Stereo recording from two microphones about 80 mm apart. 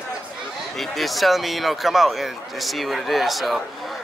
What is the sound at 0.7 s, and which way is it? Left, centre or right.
A man's voice, centre.